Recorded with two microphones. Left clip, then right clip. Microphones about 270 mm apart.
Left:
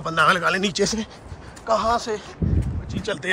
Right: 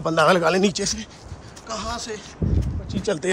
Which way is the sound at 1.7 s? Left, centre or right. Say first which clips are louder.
Left 9 dB; centre.